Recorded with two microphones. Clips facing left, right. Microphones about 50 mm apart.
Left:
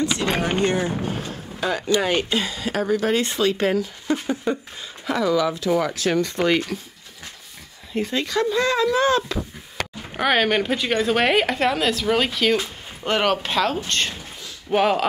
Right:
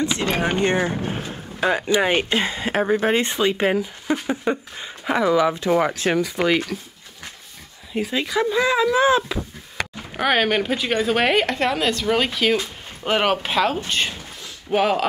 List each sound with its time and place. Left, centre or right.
0.4 s speech: right
1.0 s boat: right
1.6 s speech: right
6.1 s a woman's voice: centre
7.9 s speech: centre
10.1 s a woman's voice: centre